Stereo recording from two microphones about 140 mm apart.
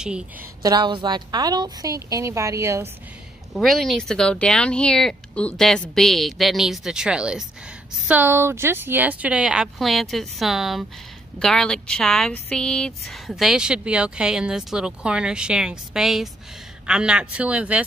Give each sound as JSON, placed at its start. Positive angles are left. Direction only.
{"t": 0.6, "sound": "a woman's voice", "side_deg": -30}
{"t": 3.5, "sound": "speech", "side_deg": 0}